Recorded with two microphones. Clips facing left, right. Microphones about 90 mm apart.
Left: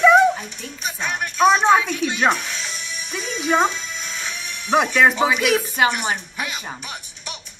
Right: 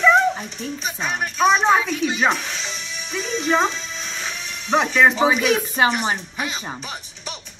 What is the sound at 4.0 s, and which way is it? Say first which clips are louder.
Music: even; 35° right (ahead or behind).